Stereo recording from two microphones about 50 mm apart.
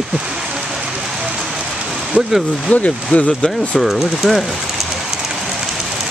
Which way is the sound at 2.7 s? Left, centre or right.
Left.